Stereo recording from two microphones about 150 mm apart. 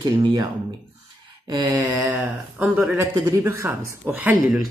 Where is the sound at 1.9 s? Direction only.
15° right (ahead or behind).